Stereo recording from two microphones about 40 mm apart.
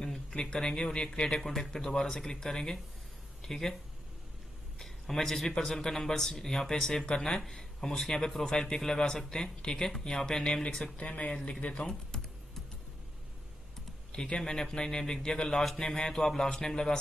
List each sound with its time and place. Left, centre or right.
0.0 s speech: centre
1.4 s speech: centre
4.7 s a sound: centre
5.7 s speech: centre
9.8 s speech: centre
10.4 s speech: left
14.1 s speech: centre
15.5 s speech: centre